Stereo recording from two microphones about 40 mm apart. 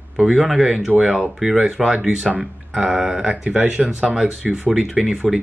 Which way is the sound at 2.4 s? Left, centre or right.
Centre.